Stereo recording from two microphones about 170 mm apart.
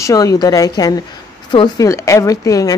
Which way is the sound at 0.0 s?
20° left (ahead or behind).